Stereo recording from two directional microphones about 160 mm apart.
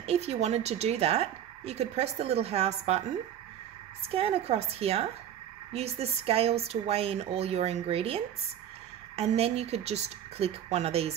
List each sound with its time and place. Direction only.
0.0 s a woman's voice: 40° right (ahead or behind)
4.1 s a woman's voice: 35° right (ahead or behind)